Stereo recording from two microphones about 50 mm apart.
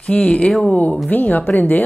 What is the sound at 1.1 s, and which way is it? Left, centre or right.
Speech, left.